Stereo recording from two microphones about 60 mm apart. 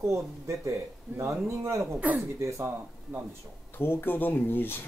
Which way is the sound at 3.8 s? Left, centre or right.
Left.